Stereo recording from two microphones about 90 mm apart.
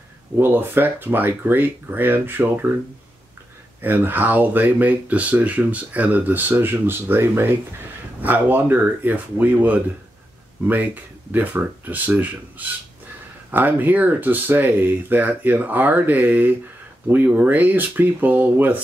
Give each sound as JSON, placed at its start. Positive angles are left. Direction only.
{"t": 0.4, "sound": "speech", "side_deg": -20}
{"t": 3.8, "sound": "speech", "side_deg": -20}